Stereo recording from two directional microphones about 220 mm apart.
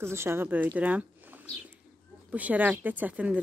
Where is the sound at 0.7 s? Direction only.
5° right (ahead or behind).